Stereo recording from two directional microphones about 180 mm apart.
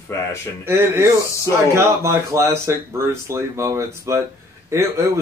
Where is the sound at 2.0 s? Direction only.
15° right (ahead or behind).